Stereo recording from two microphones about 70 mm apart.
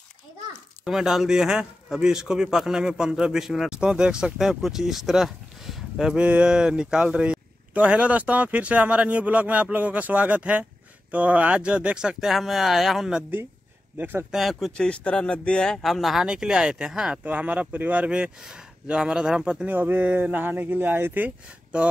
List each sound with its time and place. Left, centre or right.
0.8 s a man's voice: centre
13.9 s speech: right
14.3 s speech: centre
14.8 s speech: centre
17.2 s a man's voice: right
19.7 s speech: right
21.7 s a man's voice: centre